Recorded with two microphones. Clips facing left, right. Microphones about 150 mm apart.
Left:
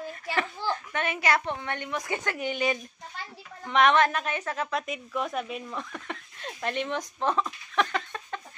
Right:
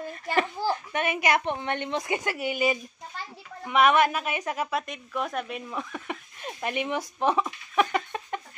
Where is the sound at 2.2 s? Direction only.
10° right (ahead or behind).